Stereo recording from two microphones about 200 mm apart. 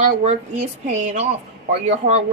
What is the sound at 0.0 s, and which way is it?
Speech, 35° right (ahead or behind).